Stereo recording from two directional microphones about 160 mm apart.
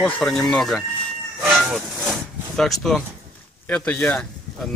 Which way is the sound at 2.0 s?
Centre (ahead or behind).